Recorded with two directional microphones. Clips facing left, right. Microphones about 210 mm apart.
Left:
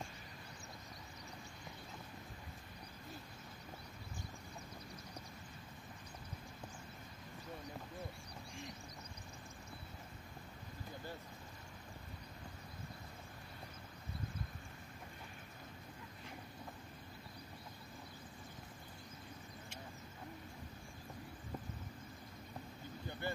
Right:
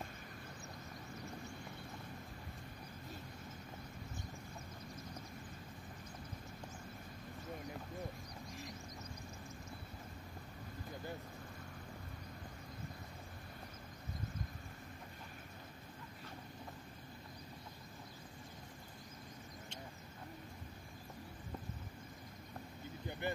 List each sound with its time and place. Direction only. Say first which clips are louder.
23.2 s speech: right 2 dB; 20° right (ahead or behind)